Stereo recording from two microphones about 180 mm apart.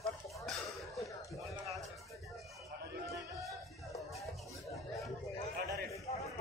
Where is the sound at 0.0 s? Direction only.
Centre (ahead or behind).